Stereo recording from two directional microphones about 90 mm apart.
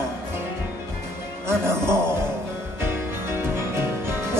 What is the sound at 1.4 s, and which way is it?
Music, 30° right (ahead or behind).